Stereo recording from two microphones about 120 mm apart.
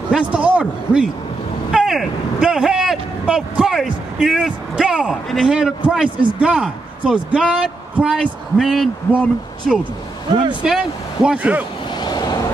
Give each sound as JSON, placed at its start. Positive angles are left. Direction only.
{"t": 0.1, "sound": "a man's voice", "side_deg": -10}
{"t": 11.9, "sound": "vehicle", "side_deg": 35}